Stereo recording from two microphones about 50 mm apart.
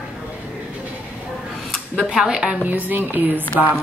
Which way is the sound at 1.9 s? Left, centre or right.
Centre.